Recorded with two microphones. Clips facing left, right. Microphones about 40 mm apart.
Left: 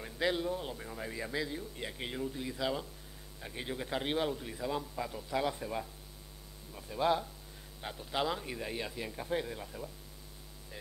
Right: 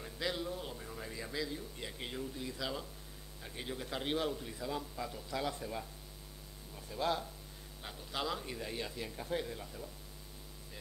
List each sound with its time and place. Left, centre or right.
0.0 s a man's voice: left
7.0 s a man's voice: centre